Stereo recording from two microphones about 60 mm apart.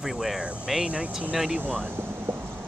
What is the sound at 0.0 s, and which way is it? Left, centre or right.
Speech, centre.